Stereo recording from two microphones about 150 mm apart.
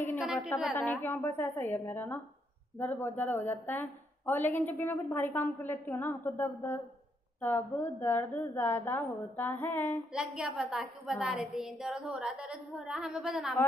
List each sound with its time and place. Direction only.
0.2 s a sound: centre (ahead or behind)
0.7 s a woman's voice: 10° left (ahead or behind)
10.1 s a woman's voice: 5° right (ahead or behind)